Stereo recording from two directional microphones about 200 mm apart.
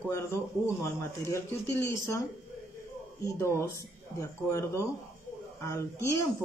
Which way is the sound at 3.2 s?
15° left (ahead or behind).